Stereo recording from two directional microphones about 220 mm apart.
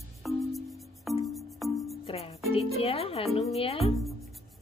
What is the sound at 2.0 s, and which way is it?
Music, 25° left (ahead or behind).